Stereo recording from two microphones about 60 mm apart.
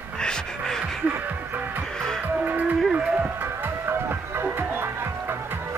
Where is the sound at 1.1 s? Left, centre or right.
Right.